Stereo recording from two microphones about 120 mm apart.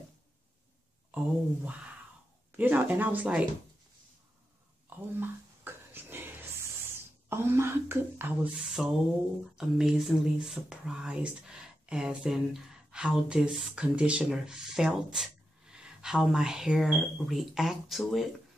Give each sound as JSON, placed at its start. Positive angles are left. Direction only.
{"t": 1.1, "sound": "speech", "side_deg": -10}
{"t": 4.8, "sound": "a sound", "side_deg": -15}
{"t": 7.2, "sound": "speech", "side_deg": -20}
{"t": 8.8, "sound": "speech", "side_deg": -5}